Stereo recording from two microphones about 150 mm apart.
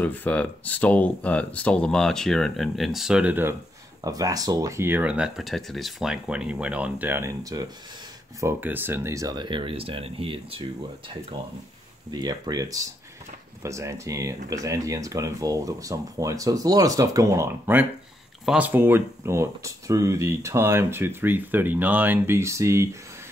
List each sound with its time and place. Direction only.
0.0 s speech: 10° left (ahead or behind); by 3.5 s 10° right (ahead or behind)
4.0 s speech: 25° right (ahead or behind)
12.1 s speech: 25° right (ahead or behind)
18.4 s speech: 5° right (ahead or behind)
18.7 s speech: 15° right (ahead or behind)